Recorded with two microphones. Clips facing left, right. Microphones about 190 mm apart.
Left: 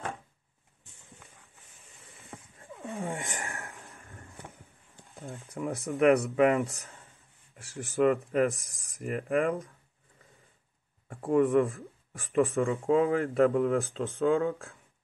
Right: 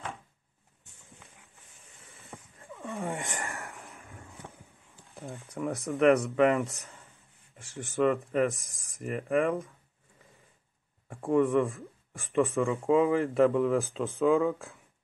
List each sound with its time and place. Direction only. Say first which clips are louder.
3.1 s speech: right 1 dB; centre (ahead or behind)
5.2 s speech: right 1 dB; centre (ahead or behind)
11.1 s speech: even; centre (ahead or behind)